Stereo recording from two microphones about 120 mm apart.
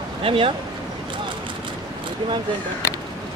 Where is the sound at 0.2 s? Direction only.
50° right (ahead or behind).